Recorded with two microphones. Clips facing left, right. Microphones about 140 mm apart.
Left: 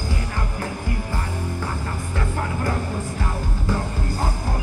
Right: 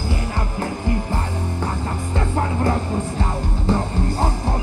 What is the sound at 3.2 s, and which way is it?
Music, 25° right (ahead or behind).